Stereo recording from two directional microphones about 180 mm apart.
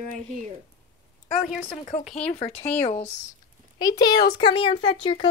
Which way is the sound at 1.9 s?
35° left (ahead or behind).